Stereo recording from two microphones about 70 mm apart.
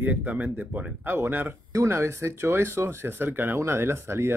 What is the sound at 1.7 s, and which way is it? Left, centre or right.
Speech, right.